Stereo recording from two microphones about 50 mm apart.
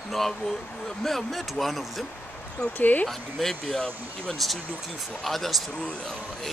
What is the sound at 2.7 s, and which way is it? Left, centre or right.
Speech, left.